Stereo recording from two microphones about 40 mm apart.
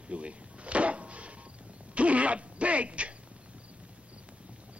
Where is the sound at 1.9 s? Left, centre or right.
Right.